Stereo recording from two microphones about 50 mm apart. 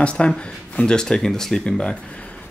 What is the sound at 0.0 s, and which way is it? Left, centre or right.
Speech, left.